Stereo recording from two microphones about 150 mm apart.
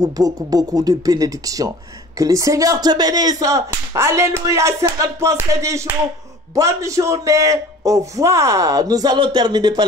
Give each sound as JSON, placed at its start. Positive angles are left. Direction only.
{"t": 0.0, "sound": "a man's voice", "side_deg": -25}